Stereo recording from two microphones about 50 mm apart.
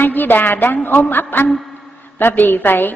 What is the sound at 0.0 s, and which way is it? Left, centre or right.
A woman's voice, left.